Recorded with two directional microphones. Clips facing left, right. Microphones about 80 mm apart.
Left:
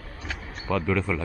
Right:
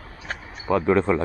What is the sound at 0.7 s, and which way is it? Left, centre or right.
Speech, right.